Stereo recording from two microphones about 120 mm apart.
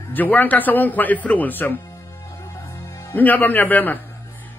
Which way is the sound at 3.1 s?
15° left (ahead or behind).